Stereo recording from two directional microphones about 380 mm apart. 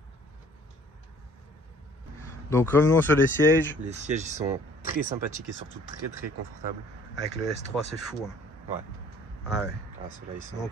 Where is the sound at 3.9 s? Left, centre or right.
Centre.